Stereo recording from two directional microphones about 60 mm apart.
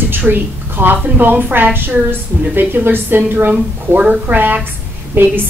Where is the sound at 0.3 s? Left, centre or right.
Right.